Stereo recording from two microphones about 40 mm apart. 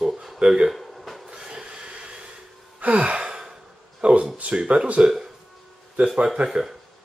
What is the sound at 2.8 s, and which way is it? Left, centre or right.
Gasp, right.